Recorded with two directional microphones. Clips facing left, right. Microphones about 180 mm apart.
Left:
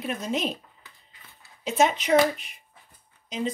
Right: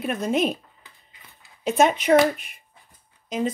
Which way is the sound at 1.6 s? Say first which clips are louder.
Right 3 dB; 55° right (ahead or behind).